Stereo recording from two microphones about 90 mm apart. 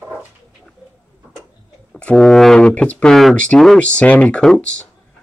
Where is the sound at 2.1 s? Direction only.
5° left (ahead or behind).